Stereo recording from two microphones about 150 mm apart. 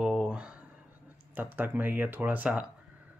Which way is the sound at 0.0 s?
5° right (ahead or behind).